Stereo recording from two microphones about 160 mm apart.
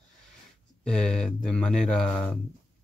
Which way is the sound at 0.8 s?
5° left (ahead or behind).